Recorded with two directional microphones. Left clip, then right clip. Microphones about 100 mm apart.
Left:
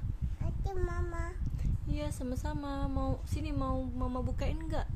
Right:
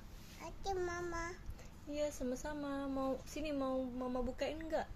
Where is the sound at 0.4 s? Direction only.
10° left (ahead or behind).